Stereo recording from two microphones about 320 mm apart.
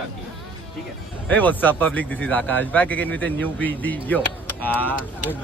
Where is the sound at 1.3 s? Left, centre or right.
Centre.